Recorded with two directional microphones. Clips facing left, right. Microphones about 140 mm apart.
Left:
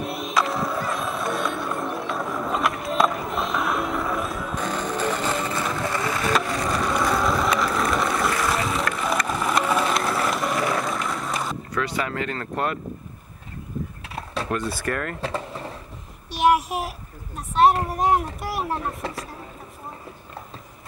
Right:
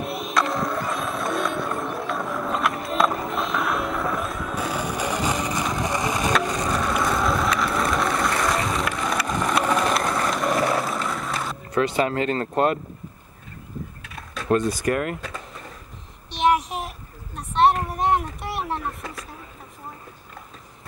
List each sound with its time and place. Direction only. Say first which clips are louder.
0.1 s a sound: right 1 dB; centre (ahead or behind)
4.6 s vehicle: even; 10° right (ahead or behind)
6.4 s skateboard: right 1 dB; 20° right (ahead or behind)
6.7 s vehicle: left 2 dB; centre (ahead or behind)
11.1 s skateboard: even; centre (ahead or behind)
11.7 s speech: right 7 dB; 25° right (ahead or behind)
14.0 s a sound: left 6 dB; 30° left (ahead or behind)
14.7 s speech: right 4 dB; 15° right (ahead or behind)
15.1 s vehicle: left 7 dB; 30° left (ahead or behind)
16.3 s child singing: left 1 dB; 5° left (ahead or behind)
17.8 s a sound: left 1 dB; centre (ahead or behind)
18.9 s vehicle: left 5 dB; 30° left (ahead or behind)